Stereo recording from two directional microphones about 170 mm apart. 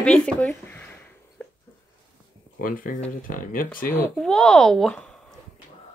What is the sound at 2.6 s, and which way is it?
Speech, 55° left (ahead or behind).